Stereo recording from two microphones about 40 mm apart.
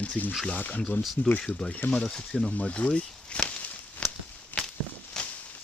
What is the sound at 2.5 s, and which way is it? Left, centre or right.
Speech, left.